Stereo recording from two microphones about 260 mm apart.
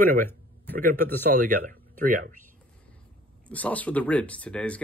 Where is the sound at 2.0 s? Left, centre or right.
Right.